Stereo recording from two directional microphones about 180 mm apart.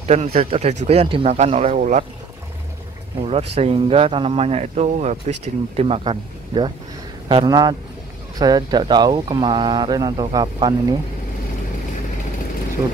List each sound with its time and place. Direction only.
0.0 s speech: 35° right (ahead or behind)
3.3 s speech: 35° right (ahead or behind)